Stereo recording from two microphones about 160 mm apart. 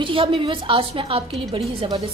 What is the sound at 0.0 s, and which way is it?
A woman's voice, 30° right (ahead or behind).